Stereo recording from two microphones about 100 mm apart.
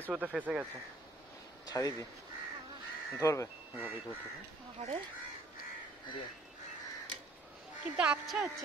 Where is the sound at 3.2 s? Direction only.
30° left (ahead or behind).